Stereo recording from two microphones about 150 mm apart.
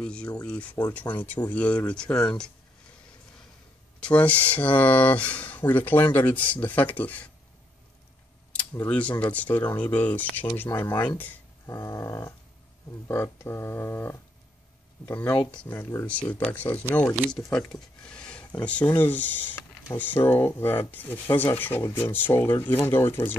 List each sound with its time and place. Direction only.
0.0 s speech: 5° left (ahead or behind)
4.0 s speech: 10° left (ahead or behind)
8.7 s speech: 10° left (ahead or behind)